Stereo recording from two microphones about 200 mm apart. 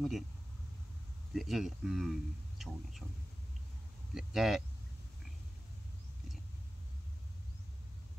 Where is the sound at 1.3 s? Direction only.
Centre (ahead or behind).